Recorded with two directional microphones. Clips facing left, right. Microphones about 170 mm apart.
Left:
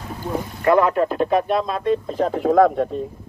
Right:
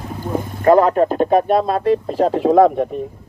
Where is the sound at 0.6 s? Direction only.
40° right (ahead or behind).